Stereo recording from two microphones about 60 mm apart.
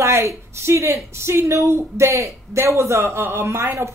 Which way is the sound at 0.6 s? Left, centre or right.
Right.